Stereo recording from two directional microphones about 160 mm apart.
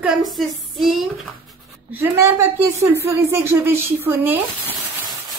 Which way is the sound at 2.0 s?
15° right (ahead or behind).